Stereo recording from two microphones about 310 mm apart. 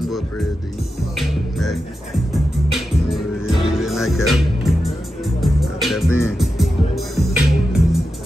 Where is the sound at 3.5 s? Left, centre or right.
Centre.